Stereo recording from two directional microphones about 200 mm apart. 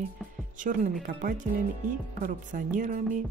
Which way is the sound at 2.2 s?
40° right (ahead or behind).